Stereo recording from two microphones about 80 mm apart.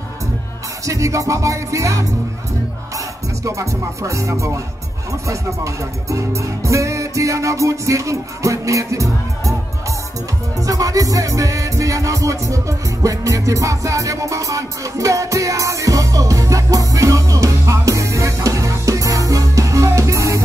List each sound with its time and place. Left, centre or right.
0.8 s speech: right
3.4 s speech: right
10.6 s music: right